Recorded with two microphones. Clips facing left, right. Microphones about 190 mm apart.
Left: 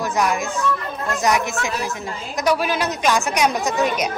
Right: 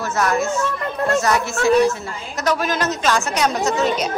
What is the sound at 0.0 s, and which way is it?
A woman's voice, 15° left (ahead or behind).